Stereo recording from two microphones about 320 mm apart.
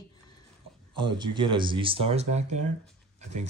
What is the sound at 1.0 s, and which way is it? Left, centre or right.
Speech, centre.